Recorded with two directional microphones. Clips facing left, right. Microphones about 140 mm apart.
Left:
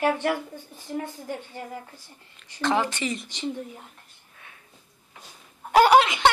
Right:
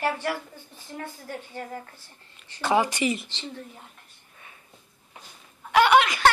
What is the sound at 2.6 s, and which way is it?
Speech, 10° right (ahead or behind).